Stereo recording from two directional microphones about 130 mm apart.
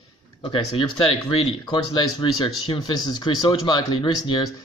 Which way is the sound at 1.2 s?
35° left (ahead or behind).